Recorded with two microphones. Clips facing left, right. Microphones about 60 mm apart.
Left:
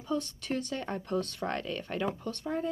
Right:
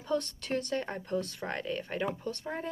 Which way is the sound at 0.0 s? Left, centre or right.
Right.